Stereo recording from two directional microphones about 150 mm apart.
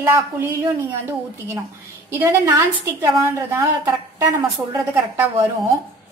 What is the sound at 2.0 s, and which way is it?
A woman's voice, 20° right (ahead or behind).